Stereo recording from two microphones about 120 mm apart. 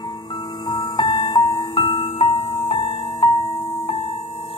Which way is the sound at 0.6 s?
40° left (ahead or behind).